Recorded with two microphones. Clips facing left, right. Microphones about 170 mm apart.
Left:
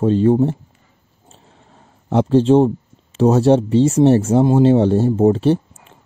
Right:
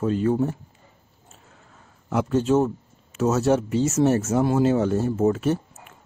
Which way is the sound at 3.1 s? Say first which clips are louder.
Left 7 dB; 30° left (ahead or behind).